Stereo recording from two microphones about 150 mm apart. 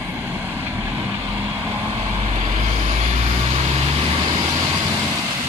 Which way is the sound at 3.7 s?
40° right (ahead or behind).